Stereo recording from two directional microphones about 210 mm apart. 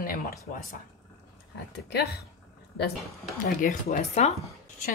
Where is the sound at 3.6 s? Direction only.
40° left (ahead or behind).